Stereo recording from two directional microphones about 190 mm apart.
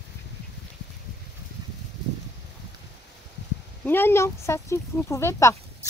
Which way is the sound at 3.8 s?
10° left (ahead or behind).